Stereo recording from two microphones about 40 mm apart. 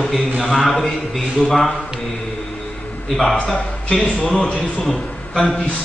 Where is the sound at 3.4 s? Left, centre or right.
Centre.